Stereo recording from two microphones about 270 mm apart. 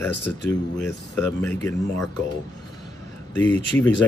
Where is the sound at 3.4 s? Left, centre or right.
Centre.